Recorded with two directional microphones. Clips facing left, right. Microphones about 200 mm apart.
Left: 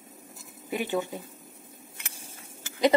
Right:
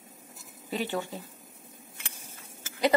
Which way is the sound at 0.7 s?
15° left (ahead or behind).